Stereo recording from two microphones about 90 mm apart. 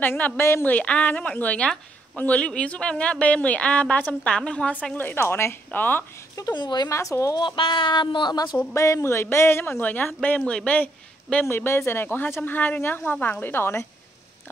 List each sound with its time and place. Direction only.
0.0 s speech: 25° left (ahead or behind)
0.7 s a woman's voice: 15° left (ahead or behind)
6.5 s speech: 55° left (ahead or behind)
6.9 s a woman's voice: 35° left (ahead or behind)
7.3 s speech: 70° left (ahead or behind); by 8.5 s 50° left (ahead or behind)
8.7 s speech: 35° left (ahead or behind); by 11.4 s 15° left (ahead or behind)
11.4 s speech: 30° left (ahead or behind)